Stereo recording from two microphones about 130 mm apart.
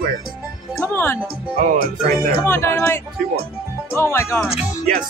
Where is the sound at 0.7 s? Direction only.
15° left (ahead or behind).